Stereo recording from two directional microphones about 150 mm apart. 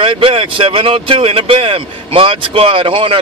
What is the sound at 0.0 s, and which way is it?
Speech, 35° right (ahead or behind).